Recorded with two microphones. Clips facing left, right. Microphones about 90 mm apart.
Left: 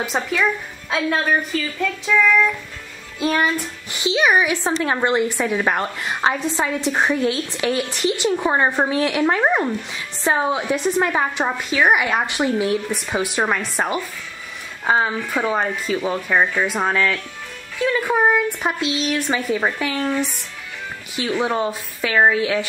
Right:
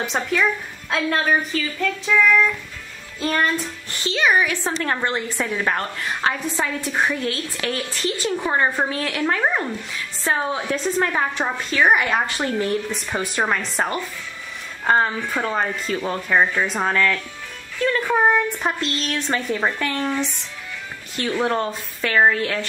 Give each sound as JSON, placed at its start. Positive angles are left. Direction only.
{"t": 0.0, "sound": "a woman's voice", "side_deg": 5}